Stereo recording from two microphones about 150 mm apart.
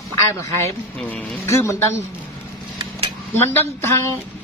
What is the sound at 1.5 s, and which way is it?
Speech, 20° left (ahead or behind).